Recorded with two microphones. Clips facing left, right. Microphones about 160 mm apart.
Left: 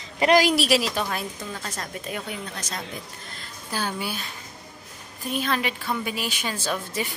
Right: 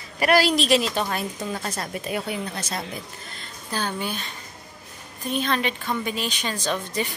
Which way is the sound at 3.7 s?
10° left (ahead or behind).